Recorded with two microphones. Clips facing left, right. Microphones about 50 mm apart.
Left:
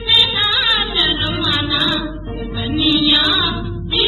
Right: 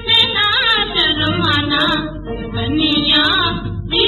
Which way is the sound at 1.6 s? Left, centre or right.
Centre.